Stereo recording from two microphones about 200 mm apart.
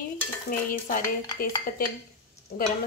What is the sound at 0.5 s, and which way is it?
Speech, 45° left (ahead or behind).